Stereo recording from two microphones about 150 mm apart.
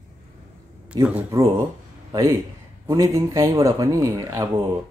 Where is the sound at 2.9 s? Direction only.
20° right (ahead or behind).